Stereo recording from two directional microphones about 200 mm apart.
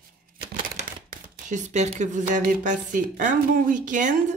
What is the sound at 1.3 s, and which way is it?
Speech, 40° right (ahead or behind).